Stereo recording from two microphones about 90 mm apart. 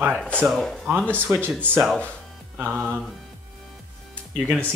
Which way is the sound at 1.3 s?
30° right (ahead or behind).